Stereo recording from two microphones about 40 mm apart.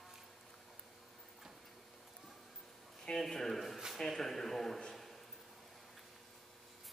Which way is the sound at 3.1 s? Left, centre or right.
Centre.